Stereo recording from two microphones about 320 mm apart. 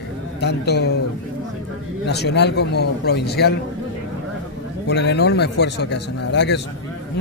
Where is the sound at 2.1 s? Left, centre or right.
Left.